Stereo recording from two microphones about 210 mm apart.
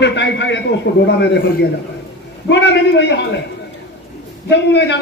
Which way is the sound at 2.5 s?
60° left (ahead or behind).